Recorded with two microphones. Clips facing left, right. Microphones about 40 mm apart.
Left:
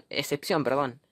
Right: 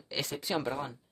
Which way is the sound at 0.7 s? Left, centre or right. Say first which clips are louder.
Left 10 dB; left.